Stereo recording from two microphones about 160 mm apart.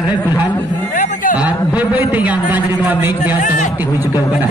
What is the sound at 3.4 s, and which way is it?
Speech, 55° left (ahead or behind).